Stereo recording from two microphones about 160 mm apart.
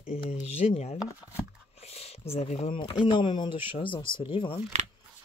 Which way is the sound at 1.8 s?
40° left (ahead or behind).